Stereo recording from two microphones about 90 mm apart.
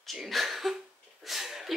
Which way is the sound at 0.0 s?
Centre (ahead or behind).